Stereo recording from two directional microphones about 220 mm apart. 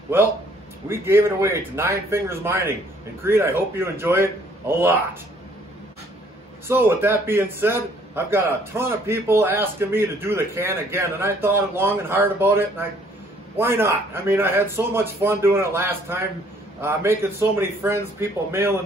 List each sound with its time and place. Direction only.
0.1 s a man's voice: 10° right (ahead or behind)
6.7 s a man's voice: 10° right (ahead or behind)